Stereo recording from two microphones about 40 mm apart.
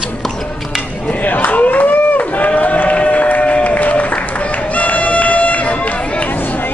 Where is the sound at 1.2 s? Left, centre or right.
Left.